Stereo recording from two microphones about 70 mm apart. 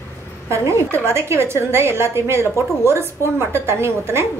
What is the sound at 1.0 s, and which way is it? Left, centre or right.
A woman's voice, right.